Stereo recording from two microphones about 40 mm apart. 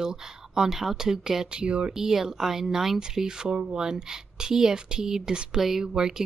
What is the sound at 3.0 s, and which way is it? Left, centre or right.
Speech, centre.